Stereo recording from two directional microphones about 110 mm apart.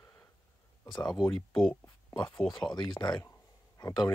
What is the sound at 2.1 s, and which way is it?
Speech, 35° left (ahead or behind).